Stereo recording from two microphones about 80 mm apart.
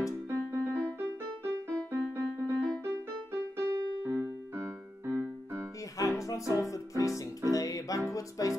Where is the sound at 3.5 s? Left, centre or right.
Right.